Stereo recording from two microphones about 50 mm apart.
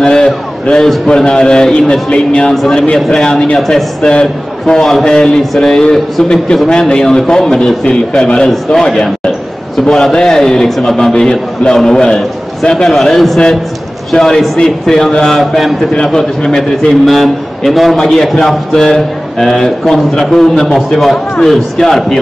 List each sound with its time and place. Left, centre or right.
0.0 s a man's voice: centre
5.4 s a man's voice: centre
15.9 s a man's voice: centre
17.0 s a man's voice: centre